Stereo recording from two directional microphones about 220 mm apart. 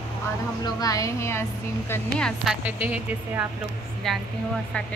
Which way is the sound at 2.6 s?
5° right (ahead or behind).